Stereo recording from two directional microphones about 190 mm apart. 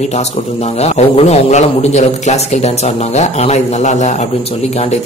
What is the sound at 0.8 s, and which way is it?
A man's voice, 35° left (ahead or behind).